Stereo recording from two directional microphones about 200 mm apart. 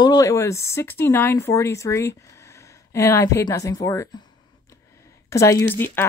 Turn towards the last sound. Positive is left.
turn(degrees=10)  # may be behind; listen again after turning